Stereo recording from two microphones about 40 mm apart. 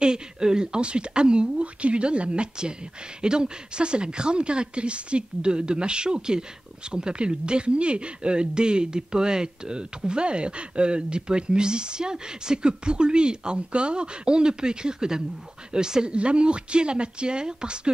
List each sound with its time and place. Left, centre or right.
0.0 s speech: centre